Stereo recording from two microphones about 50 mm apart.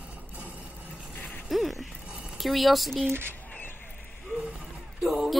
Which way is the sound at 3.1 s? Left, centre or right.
Right.